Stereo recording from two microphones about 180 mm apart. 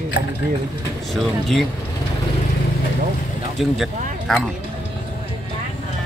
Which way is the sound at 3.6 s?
Centre (ahead or behind).